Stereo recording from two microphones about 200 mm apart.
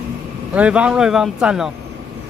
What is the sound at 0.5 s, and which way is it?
A man's voice, 5° right (ahead or behind).